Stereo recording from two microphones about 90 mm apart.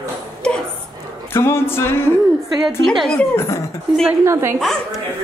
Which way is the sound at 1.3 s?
25° left (ahead or behind).